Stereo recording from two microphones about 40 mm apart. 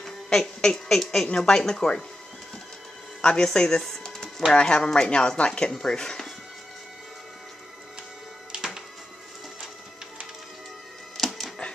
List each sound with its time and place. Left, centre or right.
0.0 s a woman's voice: centre
1.3 s a woman's voice: left
3.2 s a sound: centre
4.5 s a woman's voice: left
11.1 s music: centre